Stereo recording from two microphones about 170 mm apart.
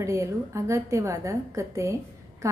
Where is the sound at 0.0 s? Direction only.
15° right (ahead or behind).